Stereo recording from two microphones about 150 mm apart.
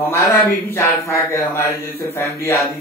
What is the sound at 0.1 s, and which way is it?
Speech, 15° left (ahead or behind).